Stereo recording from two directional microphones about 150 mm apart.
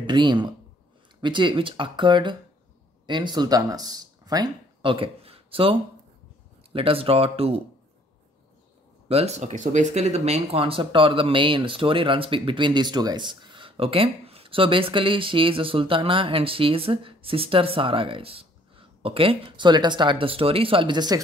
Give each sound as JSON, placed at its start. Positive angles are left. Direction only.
{"t": 0.0, "sound": "speech", "side_deg": -30}
{"t": 9.1, "sound": "speech", "side_deg": -45}